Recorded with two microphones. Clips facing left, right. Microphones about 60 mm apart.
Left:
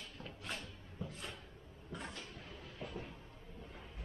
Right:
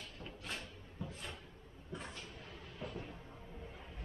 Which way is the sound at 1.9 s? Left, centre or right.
Centre.